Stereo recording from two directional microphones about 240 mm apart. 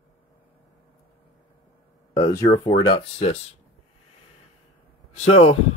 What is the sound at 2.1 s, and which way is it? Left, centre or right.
Speech, centre.